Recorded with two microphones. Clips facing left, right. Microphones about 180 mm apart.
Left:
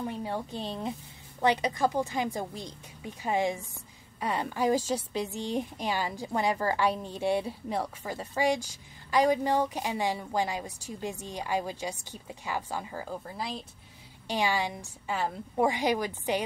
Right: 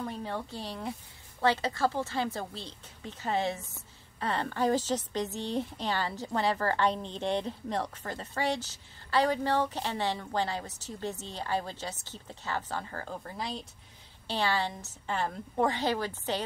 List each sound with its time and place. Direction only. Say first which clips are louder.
0.0 s a woman's voice: left 2 dB; 10° left (ahead or behind)